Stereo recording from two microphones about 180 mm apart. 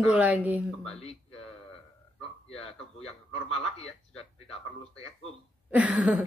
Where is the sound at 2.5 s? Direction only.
35° left (ahead or behind).